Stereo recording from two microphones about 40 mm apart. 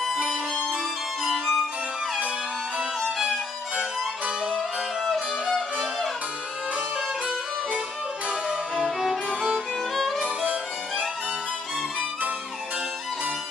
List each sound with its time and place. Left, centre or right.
1.3 s violin: centre
8.3 s harpsichord: right
10.1 s music: right